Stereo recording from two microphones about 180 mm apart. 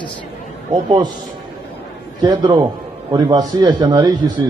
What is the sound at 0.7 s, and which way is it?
Speech, 25° right (ahead or behind).